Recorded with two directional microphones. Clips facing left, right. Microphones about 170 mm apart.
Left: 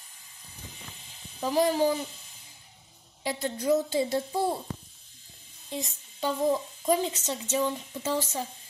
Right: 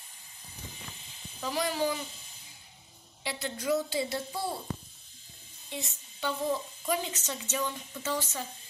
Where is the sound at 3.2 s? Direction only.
40° left (ahead or behind).